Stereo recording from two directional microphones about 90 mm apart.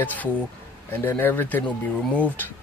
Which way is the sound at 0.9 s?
25° left (ahead or behind).